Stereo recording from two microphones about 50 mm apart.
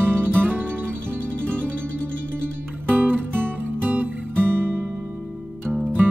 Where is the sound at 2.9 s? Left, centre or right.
Right.